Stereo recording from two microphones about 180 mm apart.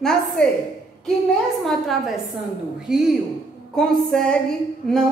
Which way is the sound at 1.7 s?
Centre (ahead or behind).